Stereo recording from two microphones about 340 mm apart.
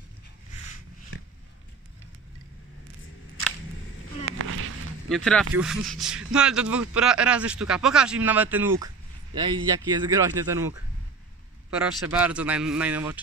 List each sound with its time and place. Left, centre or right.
4.3 s a sound: right
5.1 s speech: centre
11.8 s speech: centre